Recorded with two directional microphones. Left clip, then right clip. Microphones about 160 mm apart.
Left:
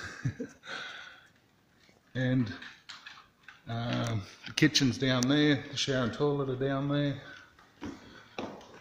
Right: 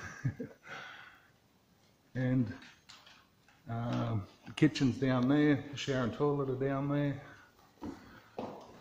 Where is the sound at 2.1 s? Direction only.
15° left (ahead or behind).